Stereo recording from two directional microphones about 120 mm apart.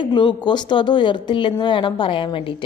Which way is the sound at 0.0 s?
40° left (ahead or behind).